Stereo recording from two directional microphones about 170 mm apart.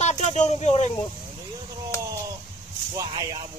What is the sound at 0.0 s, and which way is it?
Speech, 40° left (ahead or behind).